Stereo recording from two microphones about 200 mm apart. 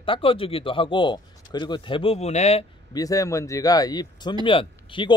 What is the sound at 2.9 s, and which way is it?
Speech, 15° left (ahead or behind).